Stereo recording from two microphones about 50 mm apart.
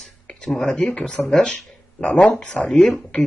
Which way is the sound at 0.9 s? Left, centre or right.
Centre.